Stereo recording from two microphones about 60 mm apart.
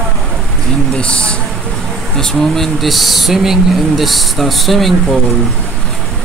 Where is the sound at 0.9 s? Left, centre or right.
Centre.